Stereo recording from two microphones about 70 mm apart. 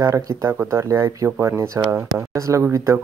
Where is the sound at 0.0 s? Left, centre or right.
Right.